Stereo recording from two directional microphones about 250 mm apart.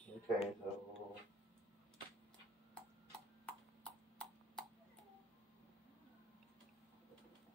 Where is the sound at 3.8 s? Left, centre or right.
Centre.